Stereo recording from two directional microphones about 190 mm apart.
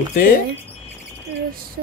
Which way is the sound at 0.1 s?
45° left (ahead or behind).